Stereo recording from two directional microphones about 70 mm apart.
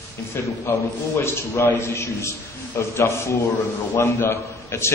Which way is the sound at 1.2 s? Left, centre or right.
Left.